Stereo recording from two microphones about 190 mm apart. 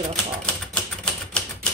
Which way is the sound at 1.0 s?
5° left (ahead or behind).